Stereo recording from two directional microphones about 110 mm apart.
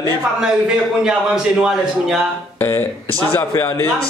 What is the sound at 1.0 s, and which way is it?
A man's voice, 5° right (ahead or behind).